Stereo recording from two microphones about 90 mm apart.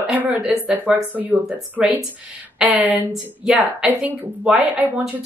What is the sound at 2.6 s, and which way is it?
Speech, 15° right (ahead or behind).